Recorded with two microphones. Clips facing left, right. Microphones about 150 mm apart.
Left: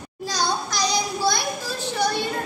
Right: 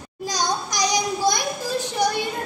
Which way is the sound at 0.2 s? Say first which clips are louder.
Even; 15° right (ahead or behind).